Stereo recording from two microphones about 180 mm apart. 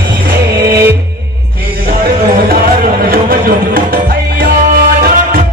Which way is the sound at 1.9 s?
55° right (ahead or behind).